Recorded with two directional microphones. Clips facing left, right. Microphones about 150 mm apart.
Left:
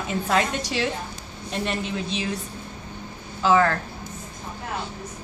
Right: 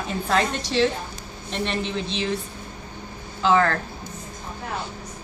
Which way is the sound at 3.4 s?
10° left (ahead or behind).